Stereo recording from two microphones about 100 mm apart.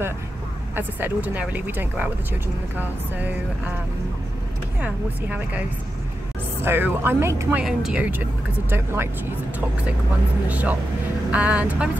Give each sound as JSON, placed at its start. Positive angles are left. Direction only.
{"t": 0.7, "sound": "speech", "side_deg": -20}
{"t": 4.7, "sound": "speech", "side_deg": -15}
{"t": 6.6, "sound": "speech", "side_deg": -20}
{"t": 7.6, "sound": "speech", "side_deg": -5}
{"t": 8.0, "sound": "speech", "side_deg": -20}
{"t": 10.5, "sound": "speech", "side_deg": -15}